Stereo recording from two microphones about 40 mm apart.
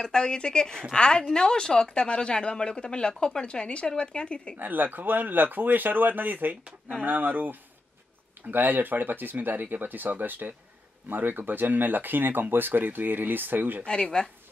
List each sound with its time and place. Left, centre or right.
0.0 s a woman's voice: centre
4.6 s speech: right
13.8 s a woman's voice: left